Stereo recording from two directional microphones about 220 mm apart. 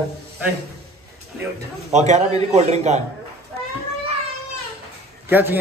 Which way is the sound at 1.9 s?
30° right (ahead or behind).